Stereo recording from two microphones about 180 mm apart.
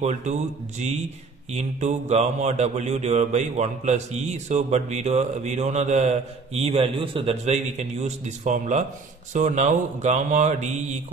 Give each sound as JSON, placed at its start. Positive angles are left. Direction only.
{"t": 0.0, "sound": "mantra", "side_deg": -40}